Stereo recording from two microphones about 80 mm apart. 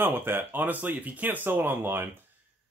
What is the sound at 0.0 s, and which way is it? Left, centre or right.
A man's voice, right.